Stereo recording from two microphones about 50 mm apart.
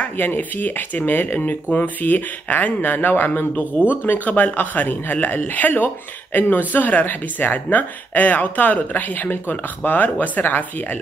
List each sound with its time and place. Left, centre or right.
0.0 s speech: left